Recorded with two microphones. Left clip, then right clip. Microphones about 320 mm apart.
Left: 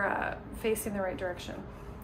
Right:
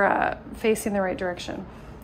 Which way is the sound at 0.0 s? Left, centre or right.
Right.